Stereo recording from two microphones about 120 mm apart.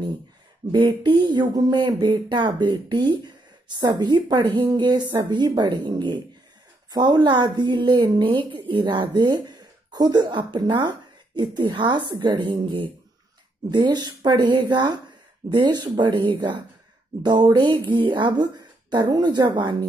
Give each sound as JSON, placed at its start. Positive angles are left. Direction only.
{"t": 0.7, "sound": "a woman's voice", "side_deg": -40}
{"t": 13.7, "sound": "a woman's voice", "side_deg": -40}